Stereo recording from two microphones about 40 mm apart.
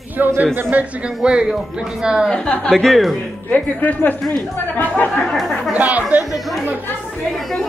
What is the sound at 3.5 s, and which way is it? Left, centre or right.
Speech, left.